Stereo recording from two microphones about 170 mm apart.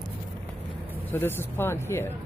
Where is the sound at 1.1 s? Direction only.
10° left (ahead or behind).